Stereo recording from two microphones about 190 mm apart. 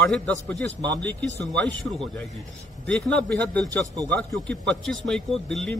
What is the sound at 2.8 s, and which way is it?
A man's voice, 5° left (ahead or behind).